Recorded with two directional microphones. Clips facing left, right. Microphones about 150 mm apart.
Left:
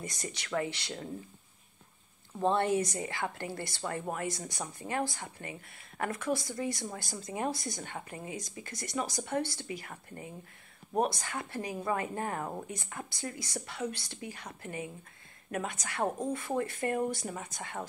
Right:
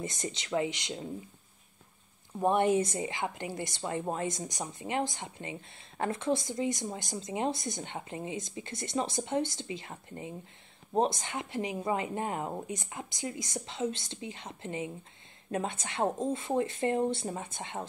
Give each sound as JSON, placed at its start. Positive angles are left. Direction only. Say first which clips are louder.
{"t": 0.0, "sound": "speech", "louder": "right 4 dB", "side_deg": -20}
{"t": 2.3, "sound": "speech", "louder": "right 2 dB", "side_deg": -15}